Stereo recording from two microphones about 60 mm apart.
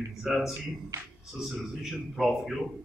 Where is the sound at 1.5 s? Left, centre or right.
Centre.